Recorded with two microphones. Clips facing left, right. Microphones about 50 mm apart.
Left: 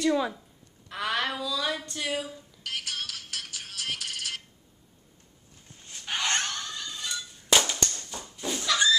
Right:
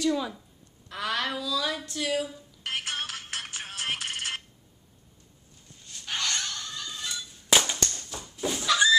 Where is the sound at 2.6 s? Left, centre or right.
Right.